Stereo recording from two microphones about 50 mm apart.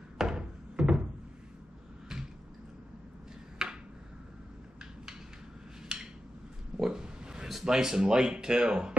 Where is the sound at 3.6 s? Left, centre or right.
Centre.